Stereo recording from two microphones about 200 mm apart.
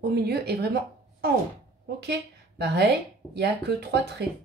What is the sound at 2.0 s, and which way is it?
A woman's voice, 55° right (ahead or behind).